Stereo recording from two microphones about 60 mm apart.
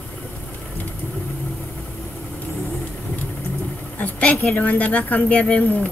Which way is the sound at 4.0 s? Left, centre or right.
Left.